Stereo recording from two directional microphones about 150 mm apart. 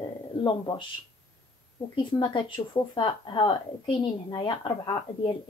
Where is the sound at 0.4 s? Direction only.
30° left (ahead or behind).